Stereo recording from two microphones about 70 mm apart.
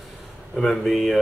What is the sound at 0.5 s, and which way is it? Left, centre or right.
Speech, centre.